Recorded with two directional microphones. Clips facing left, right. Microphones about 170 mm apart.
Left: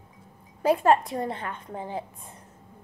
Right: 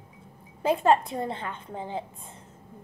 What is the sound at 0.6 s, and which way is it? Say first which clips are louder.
A woman's voice: left 1 dB; 25° right (ahead or behind).